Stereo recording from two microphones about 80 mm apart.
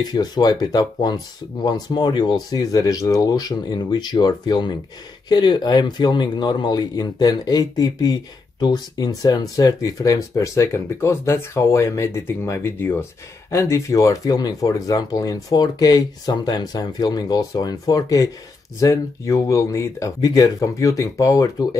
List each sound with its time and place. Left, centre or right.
0.0 s speech: left